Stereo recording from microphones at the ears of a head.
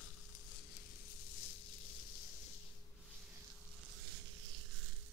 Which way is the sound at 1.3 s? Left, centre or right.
Left.